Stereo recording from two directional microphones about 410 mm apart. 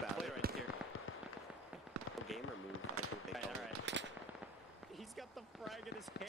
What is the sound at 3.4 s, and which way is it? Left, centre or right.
Machine gun, right.